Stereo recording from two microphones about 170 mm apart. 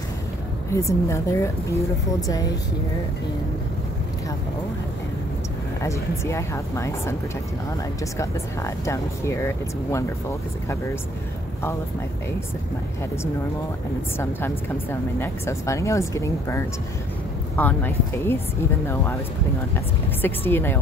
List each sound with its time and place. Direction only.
0.7 s speech: 15° left (ahead or behind)
5.8 s speech: 15° left (ahead or behind)
14.9 s speech: 15° left (ahead or behind)
20.2 s speech: 10° left (ahead or behind)